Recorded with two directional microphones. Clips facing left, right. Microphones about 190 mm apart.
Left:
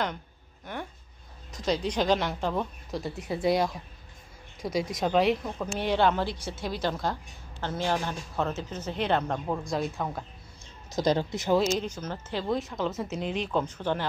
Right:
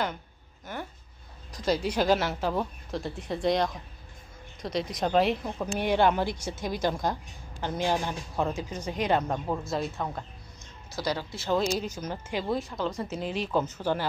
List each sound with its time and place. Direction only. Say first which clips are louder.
0.7 s speech: even; 5° right (ahead or behind)
5.8 s speech: right 1 dB; 10° right (ahead or behind)
11.0 s speech: left 6 dB; 20° left (ahead or behind)
11.8 s speech: even; 10° right (ahead or behind)
12.5 s speech: left 1 dB; centre (ahead or behind)